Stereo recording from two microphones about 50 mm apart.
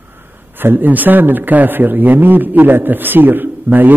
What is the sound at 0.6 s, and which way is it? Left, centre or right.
A man's voice, right.